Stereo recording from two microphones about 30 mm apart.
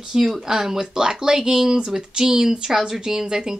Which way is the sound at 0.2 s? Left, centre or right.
Centre.